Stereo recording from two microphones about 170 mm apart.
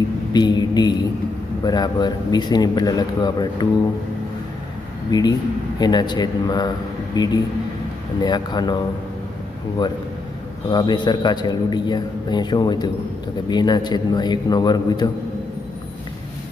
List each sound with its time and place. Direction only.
0.3 s a man's voice: 25° left (ahead or behind)
5.1 s a man's voice: 25° left (ahead or behind)
10.7 s a man's voice: 25° left (ahead or behind)